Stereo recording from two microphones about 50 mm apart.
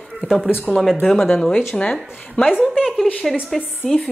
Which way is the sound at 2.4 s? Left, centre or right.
Left.